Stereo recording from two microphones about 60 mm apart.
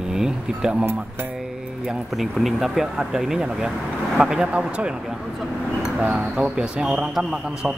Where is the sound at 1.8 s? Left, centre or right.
Centre.